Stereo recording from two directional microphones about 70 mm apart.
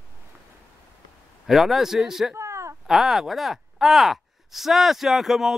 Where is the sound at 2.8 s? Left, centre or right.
Centre.